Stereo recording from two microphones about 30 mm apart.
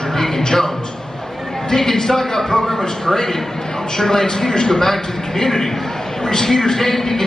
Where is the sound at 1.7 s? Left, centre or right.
Centre.